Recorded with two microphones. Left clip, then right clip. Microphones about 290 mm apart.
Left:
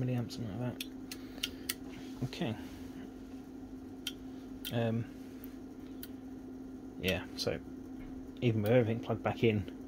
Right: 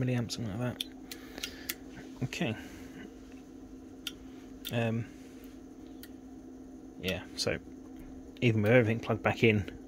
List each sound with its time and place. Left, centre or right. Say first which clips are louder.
0.0 s speech: right 4 dB; centre
2.2 s speech: right 4 dB; centre
4.7 s speech: right 2 dB; centre
7.0 s speech: left 1 dB; centre
7.3 s speech: right 3 dB; centre